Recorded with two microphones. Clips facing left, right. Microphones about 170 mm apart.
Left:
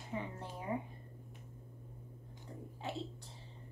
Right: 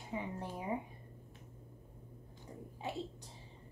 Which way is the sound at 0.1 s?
15° right (ahead or behind).